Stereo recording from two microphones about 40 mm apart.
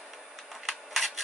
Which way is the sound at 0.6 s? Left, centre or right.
Centre.